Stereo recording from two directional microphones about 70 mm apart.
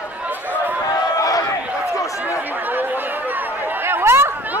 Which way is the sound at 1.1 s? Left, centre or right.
Left.